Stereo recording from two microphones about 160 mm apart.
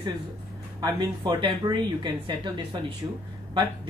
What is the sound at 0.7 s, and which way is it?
Speech, 25° right (ahead or behind).